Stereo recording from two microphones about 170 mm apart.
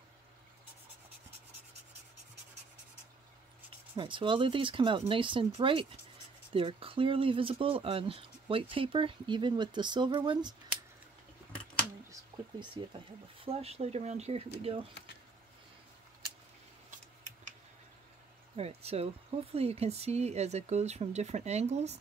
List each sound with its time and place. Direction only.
3.9 s speech: 30° right (ahead or behind)
12.1 s a sound: 30° right (ahead or behind)
13.4 s speech: 35° right (ahead or behind)
18.6 s speech: 35° right (ahead or behind)